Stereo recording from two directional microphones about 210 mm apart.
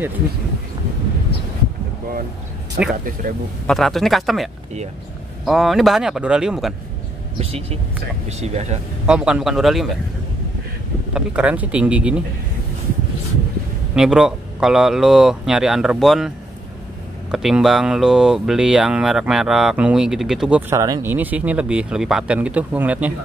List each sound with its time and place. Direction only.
2.8 s speech: 40° right (ahead or behind)
3.6 s speech: centre (ahead or behind)
7.3 s speech: 30° right (ahead or behind)
9.0 s speech: 5° right (ahead or behind)
11.1 s speech: 5° right (ahead or behind)
13.9 s speech: 5° right (ahead or behind)
17.3 s speech: centre (ahead or behind)